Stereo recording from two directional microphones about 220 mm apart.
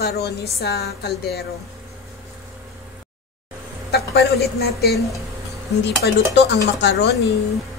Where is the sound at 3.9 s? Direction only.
45° left (ahead or behind).